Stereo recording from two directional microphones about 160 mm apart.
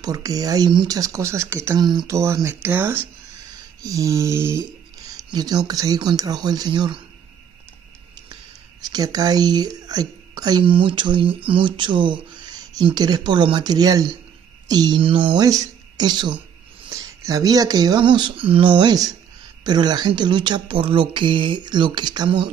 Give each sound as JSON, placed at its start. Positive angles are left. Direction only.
{"t": 0.0, "sound": "a woman's voice", "side_deg": -25}
{"t": 8.8, "sound": "a woman's voice", "side_deg": -25}